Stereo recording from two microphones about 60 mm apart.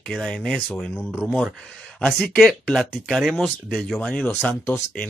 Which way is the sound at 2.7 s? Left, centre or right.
Centre.